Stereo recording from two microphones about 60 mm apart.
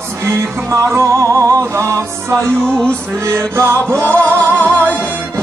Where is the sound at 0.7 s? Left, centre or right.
Right.